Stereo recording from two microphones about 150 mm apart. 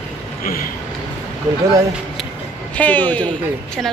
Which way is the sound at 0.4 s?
75° left (ahead or behind).